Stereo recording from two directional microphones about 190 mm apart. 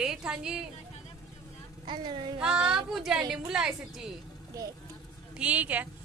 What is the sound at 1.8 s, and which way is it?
Speech, 25° right (ahead or behind).